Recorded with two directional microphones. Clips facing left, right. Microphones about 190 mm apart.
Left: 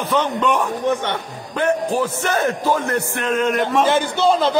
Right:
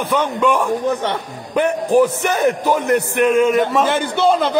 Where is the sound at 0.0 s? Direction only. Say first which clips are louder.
Right 2 dB; 10° right (ahead or behind).